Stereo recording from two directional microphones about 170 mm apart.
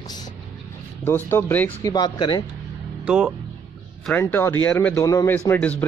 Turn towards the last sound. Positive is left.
turn(degrees=10)  # may be behind; listen again after turning